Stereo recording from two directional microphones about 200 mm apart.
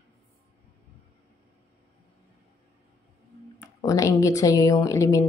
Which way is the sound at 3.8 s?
15° left (ahead or behind).